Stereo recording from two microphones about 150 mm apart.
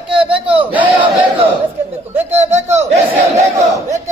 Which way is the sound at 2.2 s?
45° right (ahead or behind).